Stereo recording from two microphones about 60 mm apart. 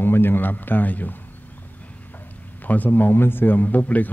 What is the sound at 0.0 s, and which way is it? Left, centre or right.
Speech, left.